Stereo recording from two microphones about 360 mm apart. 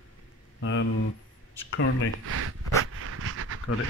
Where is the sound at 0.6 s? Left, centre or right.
Left.